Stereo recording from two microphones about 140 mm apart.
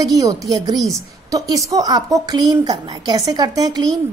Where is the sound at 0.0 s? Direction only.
25° right (ahead or behind).